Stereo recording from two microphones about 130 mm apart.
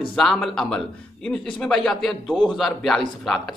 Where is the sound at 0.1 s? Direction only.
Centre (ahead or behind).